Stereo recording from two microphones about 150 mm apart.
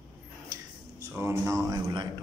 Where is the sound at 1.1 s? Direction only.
15° right (ahead or behind).